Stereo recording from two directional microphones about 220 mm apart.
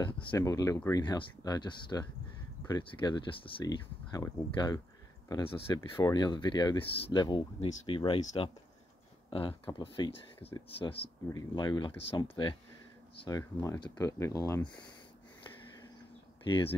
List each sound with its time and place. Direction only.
0.3 s speech: 15° left (ahead or behind)
16.4 s speech: 20° left (ahead or behind)